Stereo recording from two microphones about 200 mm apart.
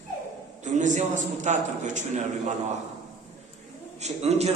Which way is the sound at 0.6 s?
40° right (ahead or behind).